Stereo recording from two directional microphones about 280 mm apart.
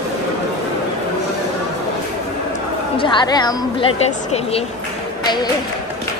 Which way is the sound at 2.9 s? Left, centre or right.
Centre.